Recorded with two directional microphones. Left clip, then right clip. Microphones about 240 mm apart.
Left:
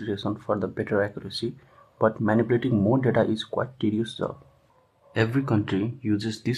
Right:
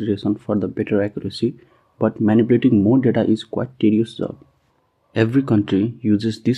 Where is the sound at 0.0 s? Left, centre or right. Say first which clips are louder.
Right 8 dB; right.